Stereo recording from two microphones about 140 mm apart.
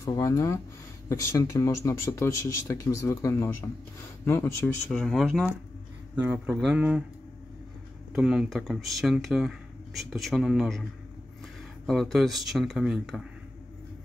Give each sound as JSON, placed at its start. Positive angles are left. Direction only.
{"t": 0.0, "sound": "a man's voice", "side_deg": 25}
{"t": 4.9, "sound": "speech", "side_deg": 0}
{"t": 6.2, "sound": "speech", "side_deg": -10}
{"t": 8.1, "sound": "speech", "side_deg": -5}